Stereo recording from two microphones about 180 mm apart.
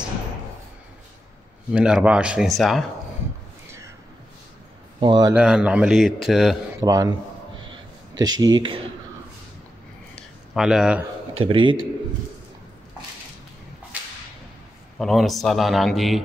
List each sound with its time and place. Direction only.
1.7 s a man's voice: 5° right (ahead or behind)
5.0 s speech: 25° right (ahead or behind)
5.3 s a man's voice: 5° right (ahead or behind)
6.8 s speech: 20° right (ahead or behind)
8.2 s speech: 20° right (ahead or behind)
10.1 s a sound: centre (ahead or behind)
11.3 s speech: 30° right (ahead or behind)
15.0 s a man's voice: centre (ahead or behind)